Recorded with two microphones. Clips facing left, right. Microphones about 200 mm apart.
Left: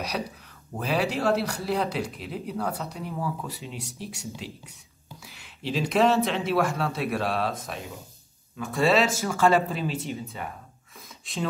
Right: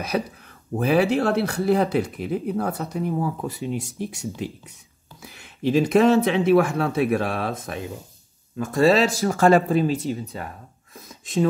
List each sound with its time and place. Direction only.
0.7 s speech: 55° right (ahead or behind)
8.5 s speech: 40° right (ahead or behind)